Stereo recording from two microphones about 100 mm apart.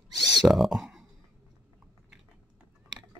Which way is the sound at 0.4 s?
Centre (ahead or behind).